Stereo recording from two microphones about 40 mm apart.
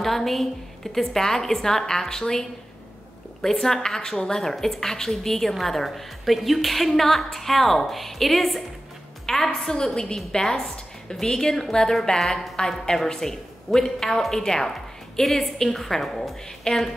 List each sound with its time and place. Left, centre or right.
0.0 s a woman's voice: centre
3.4 s a woman's voice: centre